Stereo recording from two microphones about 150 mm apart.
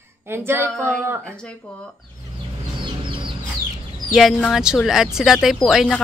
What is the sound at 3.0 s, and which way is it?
Chicken, 35° right (ahead or behind).